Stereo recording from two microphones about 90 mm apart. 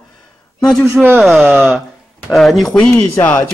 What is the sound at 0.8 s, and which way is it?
Speech, 15° right (ahead or behind).